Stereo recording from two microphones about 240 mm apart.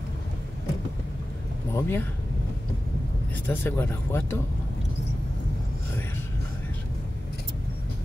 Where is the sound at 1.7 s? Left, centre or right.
Centre.